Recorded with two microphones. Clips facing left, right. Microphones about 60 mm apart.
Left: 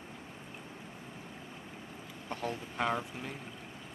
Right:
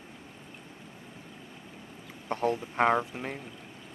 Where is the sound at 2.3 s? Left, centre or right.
Right.